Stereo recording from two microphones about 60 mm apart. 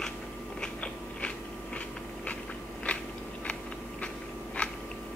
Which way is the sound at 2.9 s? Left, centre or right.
Left.